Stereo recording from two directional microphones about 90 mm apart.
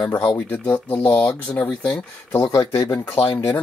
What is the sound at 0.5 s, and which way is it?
Speech, 20° left (ahead or behind).